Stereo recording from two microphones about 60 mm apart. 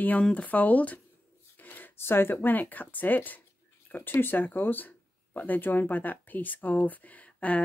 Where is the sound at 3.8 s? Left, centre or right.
Left.